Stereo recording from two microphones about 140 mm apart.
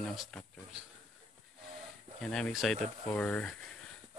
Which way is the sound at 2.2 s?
5° left (ahead or behind).